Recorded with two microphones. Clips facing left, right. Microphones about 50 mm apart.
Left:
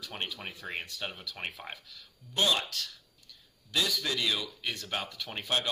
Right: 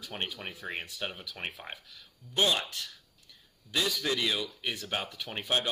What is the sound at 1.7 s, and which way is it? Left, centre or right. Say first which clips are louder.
Speech: even; centre.